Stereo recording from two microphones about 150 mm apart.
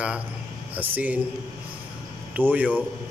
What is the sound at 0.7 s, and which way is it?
Speech, 10° right (ahead or behind).